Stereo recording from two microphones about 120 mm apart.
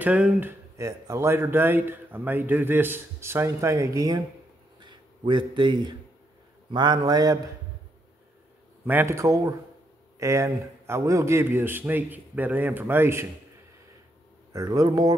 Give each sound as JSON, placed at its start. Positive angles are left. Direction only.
{"t": 0.0, "sound": "speech", "side_deg": -10}
{"t": 4.7, "sound": "a sound", "side_deg": -40}
{"t": 6.7, "sound": "a man's voice", "side_deg": -35}
{"t": 8.8, "sound": "a man's voice", "side_deg": -20}
{"t": 14.5, "sound": "a man's voice", "side_deg": -30}